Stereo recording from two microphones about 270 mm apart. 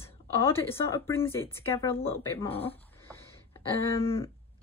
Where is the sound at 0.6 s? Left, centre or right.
Centre.